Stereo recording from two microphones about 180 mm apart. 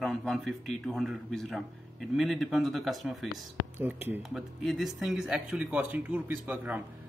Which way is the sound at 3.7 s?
10° right (ahead or behind).